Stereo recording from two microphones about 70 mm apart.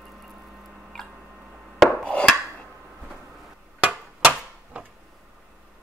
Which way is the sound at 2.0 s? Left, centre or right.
Centre.